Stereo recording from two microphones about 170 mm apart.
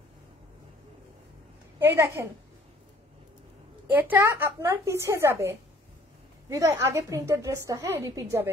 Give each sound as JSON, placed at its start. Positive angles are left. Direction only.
{"t": 1.8, "sound": "a woman's voice", "side_deg": -15}
{"t": 3.9, "sound": "a woman's voice", "side_deg": -10}